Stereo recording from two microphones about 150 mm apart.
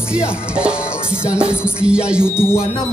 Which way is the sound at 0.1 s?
5° right (ahead or behind).